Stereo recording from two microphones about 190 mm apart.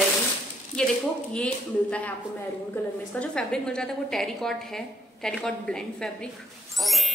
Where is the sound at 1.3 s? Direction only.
5° left (ahead or behind).